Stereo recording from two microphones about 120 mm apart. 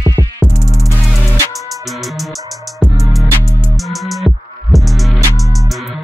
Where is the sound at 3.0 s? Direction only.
Centre (ahead or behind).